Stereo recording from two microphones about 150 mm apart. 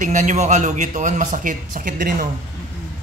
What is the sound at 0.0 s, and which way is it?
A man's voice, 55° right (ahead or behind).